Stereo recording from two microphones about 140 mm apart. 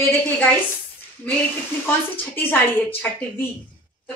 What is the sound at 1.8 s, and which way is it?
A man's voice, 15° left (ahead or behind).